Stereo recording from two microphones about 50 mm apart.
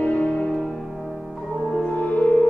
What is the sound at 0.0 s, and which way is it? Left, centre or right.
Music, left.